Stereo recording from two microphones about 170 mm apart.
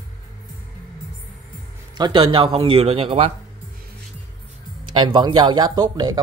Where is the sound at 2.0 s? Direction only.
25° right (ahead or behind).